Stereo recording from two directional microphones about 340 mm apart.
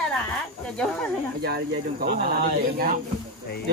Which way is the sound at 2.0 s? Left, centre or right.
Right.